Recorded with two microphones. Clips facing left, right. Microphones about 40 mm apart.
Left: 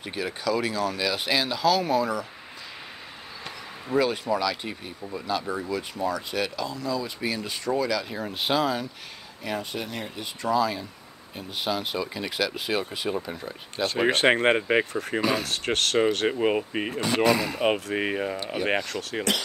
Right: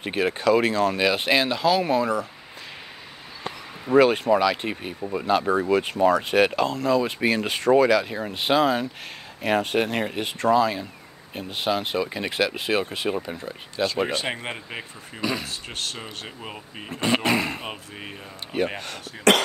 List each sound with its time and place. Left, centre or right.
0.0 s speech: right
3.9 s speech: right
7.1 s speech: right
8.1 s speech: right
9.4 s speech: right
10.5 s speech: right
13.1 s speech: centre
14.1 s speech: left
15.4 s speech: left
16.3 s speech: left
17.0 s speech: right
17.6 s speech: left